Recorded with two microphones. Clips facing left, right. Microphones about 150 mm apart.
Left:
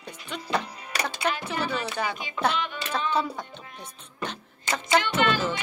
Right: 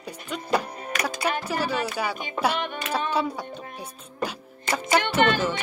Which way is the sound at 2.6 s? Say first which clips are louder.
Right 2 dB; 50° right (ahead or behind).